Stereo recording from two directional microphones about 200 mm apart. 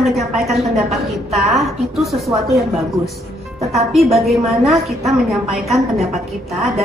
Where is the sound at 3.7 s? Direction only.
Centre (ahead or behind).